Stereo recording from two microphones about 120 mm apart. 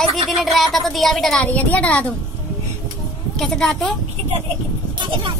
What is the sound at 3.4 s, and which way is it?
Child singing, 5° left (ahead or behind).